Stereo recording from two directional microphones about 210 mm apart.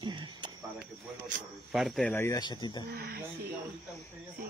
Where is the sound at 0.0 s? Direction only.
20° right (ahead or behind).